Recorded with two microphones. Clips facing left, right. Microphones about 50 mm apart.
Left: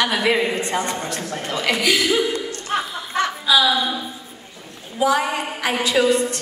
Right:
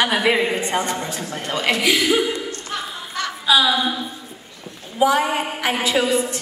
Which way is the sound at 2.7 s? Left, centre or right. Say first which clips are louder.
Left 8 dB; left.